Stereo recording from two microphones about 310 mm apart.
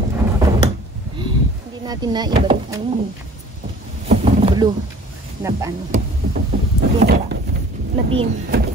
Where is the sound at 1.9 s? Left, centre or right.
Centre.